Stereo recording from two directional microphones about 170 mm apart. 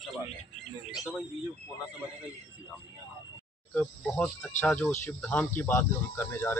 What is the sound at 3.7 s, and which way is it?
Speech, 5° left (ahead or behind).